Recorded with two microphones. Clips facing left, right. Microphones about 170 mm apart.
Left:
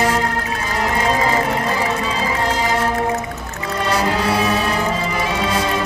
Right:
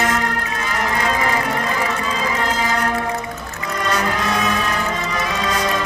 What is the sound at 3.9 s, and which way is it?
Music, 30° left (ahead or behind).